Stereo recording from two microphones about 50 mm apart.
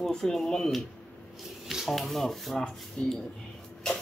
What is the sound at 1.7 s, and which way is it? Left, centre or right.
Speech, centre.